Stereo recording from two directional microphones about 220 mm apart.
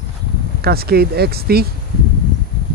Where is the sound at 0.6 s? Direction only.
45° right (ahead or behind).